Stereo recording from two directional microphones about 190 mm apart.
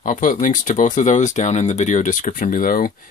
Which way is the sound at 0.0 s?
45° left (ahead or behind).